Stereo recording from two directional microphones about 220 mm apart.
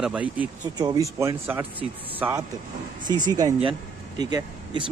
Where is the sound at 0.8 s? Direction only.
15° right (ahead or behind).